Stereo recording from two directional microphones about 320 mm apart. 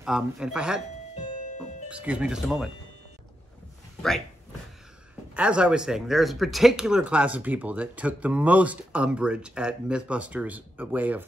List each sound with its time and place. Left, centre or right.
0.0 s speech: centre
1.9 s speech: centre
5.3 s speech: centre